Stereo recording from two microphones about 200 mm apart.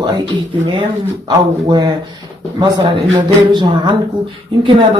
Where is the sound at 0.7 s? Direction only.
20° right (ahead or behind).